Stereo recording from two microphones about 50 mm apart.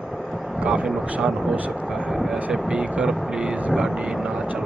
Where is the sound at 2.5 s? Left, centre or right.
Centre.